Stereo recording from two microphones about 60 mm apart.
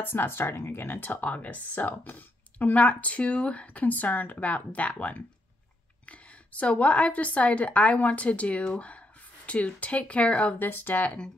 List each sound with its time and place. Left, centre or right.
0.0 s speech: left; by 10.5 s centre
10.6 s speech: left